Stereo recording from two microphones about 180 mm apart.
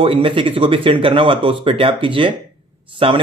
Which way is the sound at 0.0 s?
30° right (ahead or behind).